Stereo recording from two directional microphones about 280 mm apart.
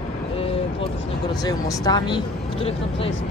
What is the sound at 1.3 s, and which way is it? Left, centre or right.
Speech, centre.